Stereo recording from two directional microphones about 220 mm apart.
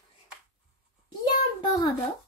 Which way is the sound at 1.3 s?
20° left (ahead or behind).